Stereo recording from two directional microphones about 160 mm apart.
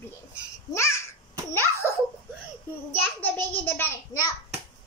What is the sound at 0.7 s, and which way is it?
Speech, 15° left (ahead or behind).